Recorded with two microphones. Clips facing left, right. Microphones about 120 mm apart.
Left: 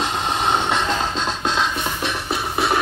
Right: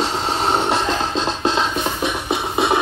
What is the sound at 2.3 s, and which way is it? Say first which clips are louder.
Music: right 2 dB; 20° right (ahead or behind).